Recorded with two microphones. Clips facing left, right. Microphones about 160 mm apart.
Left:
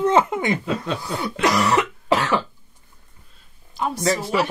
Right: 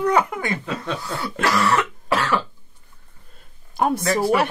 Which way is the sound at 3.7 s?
55° right (ahead or behind).